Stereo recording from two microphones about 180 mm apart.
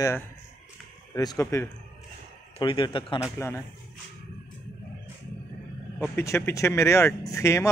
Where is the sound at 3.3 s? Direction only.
15° left (ahead or behind).